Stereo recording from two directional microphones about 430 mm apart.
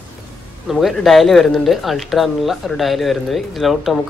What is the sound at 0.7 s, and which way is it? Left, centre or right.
Speech, centre.